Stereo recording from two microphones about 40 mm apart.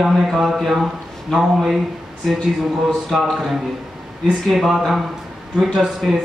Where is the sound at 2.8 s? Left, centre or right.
Centre.